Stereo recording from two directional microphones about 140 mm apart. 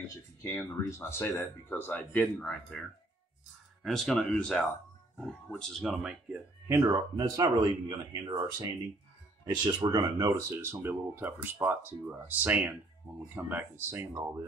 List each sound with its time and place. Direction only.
0.4 s speech: 20° left (ahead or behind)
3.8 s speech: centre (ahead or behind)
6.7 s speech: 25° right (ahead or behind)
9.5 s speech: 30° right (ahead or behind)